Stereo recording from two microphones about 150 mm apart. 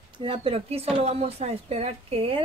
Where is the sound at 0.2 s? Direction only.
40° right (ahead or behind).